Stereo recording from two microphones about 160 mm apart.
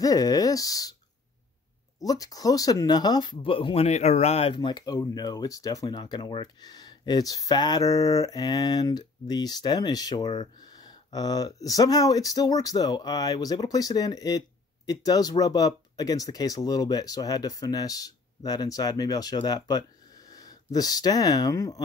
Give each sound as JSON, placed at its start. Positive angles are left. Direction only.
{"t": 0.0, "sound": "speech", "side_deg": 20}
{"t": 2.0, "sound": "speech", "side_deg": 25}
{"t": 4.6, "sound": "speech", "side_deg": 25}